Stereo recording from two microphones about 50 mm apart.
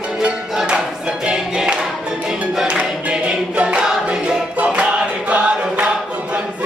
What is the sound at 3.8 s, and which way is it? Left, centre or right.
Choir, right.